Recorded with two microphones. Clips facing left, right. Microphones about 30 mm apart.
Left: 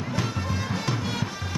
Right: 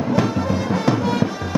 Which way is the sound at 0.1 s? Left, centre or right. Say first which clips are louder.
Right 10 dB; centre.